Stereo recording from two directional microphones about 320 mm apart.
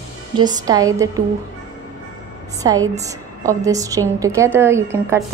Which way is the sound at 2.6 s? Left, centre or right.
Centre.